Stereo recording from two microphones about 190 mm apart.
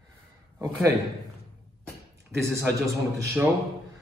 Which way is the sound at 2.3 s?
15° right (ahead or behind).